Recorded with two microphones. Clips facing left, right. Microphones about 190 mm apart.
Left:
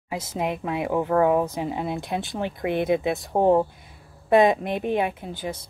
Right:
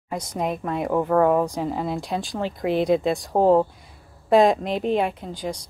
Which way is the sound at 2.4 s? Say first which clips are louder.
Right 3 dB; 60° left (ahead or behind).